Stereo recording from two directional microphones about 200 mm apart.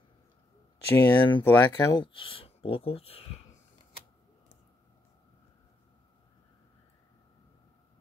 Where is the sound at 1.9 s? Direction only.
25° left (ahead or behind).